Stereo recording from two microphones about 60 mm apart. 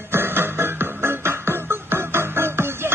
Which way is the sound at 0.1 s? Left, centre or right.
Right.